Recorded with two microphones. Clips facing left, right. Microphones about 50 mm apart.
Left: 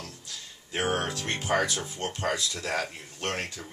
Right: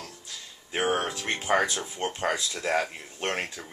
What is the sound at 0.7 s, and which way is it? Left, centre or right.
Speech, centre.